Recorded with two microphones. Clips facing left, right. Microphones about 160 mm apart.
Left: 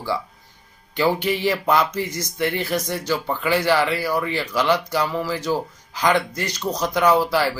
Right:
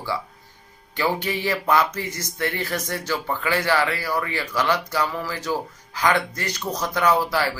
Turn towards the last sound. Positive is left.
turn(degrees=15)  # may be behind; listen again after turning